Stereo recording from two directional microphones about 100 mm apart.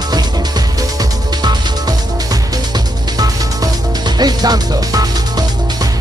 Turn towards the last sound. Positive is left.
turn(degrees=-40)  # may be behind; listen again after turning